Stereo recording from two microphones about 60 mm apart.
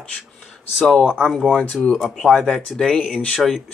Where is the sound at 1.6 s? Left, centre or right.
Centre.